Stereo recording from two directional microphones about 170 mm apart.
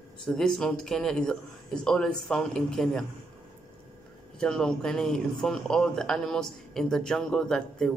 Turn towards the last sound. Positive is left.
turn(degrees=5)  # may be behind; listen again after turning